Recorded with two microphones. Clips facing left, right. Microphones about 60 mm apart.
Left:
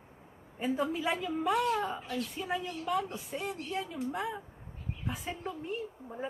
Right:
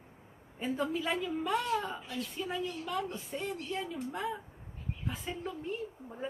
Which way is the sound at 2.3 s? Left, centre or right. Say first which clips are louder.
Left 1 dB; centre.